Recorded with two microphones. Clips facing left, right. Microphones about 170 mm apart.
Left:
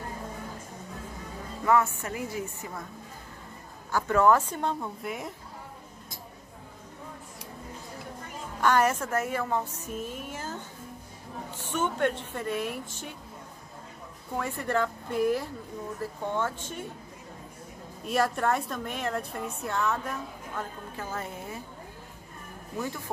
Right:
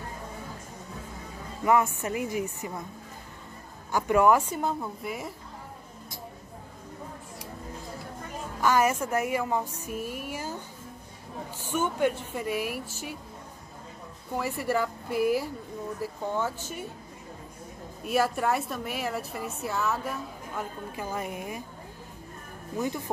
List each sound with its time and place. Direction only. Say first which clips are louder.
1.6 s speech: right 1 dB; 15° right (ahead or behind)
3.9 s speech: right 1 dB; 15° right (ahead or behind)
8.5 s speech: even; 5° right (ahead or behind)
14.3 s speech: right 1 dB; 5° right (ahead or behind)
18.0 s a woman's voice: right 1 dB; 5° right (ahead or behind)
22.8 s speech: right 4 dB; 20° right (ahead or behind)